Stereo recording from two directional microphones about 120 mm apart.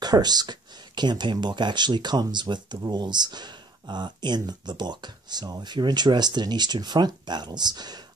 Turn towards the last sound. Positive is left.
turn(degrees=-35)  # may be behind; listen again after turning